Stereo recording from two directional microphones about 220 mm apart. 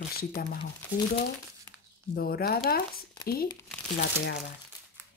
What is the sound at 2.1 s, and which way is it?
Speech, 45° left (ahead or behind).